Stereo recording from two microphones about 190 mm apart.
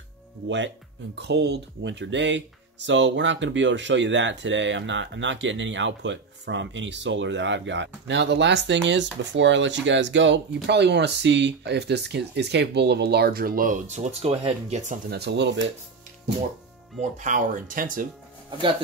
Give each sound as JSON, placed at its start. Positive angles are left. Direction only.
{"t": 1.1, "sound": "speech", "side_deg": -65}
{"t": 15.0, "sound": "speech", "side_deg": -60}
{"t": 17.2, "sound": "speech", "side_deg": -40}